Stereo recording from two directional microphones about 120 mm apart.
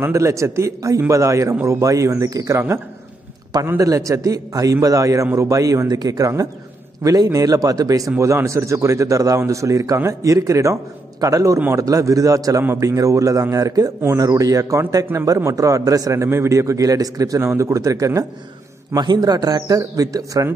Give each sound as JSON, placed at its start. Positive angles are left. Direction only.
{"t": 0.0, "sound": "a man's voice", "side_deg": -25}
{"t": 3.6, "sound": "a man's voice", "side_deg": -25}